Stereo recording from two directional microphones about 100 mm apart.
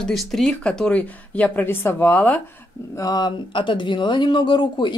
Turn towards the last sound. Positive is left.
turn(degrees=50)  # may be behind; listen again after turning